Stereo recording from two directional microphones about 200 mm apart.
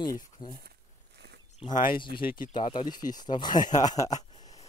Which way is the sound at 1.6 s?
40° left (ahead or behind).